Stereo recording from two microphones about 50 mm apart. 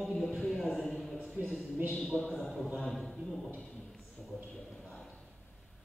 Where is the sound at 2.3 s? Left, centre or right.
Centre.